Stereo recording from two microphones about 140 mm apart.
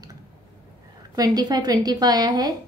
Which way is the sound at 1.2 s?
30° right (ahead or behind).